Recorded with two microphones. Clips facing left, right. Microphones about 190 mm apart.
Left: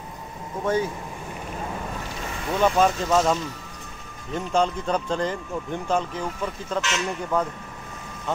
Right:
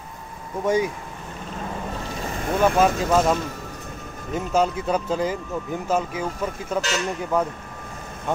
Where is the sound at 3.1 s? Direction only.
5° right (ahead or behind).